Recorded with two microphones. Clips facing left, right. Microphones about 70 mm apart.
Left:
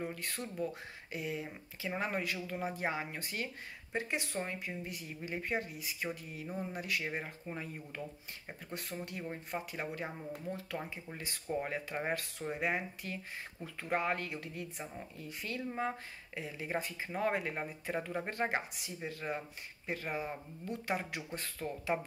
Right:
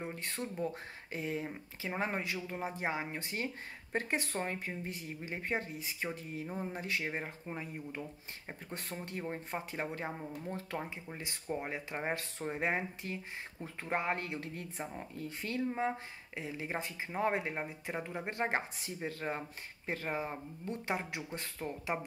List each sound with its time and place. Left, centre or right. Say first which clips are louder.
0.0 s speech: even; right
3.9 s speech: right 2 dB; right
15.9 s speech: right 2 dB; right